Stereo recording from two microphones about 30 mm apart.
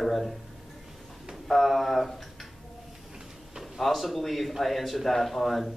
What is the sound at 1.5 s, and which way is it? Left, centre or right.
Speech, centre.